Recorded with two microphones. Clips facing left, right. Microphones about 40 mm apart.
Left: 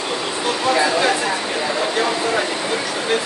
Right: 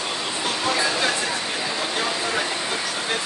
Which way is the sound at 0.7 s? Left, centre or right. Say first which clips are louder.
Left 5 dB; centre.